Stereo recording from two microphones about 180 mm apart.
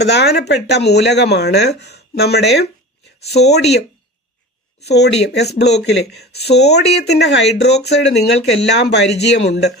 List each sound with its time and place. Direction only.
0.0 s speech: 65° left (ahead or behind)
3.3 s speech: 35° left (ahead or behind)
3.5 s speech: 65° left (ahead or behind)
4.8 s speech: 70° left (ahead or behind)